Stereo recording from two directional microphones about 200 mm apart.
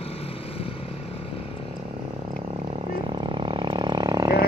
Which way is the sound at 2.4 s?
30° right (ahead or behind).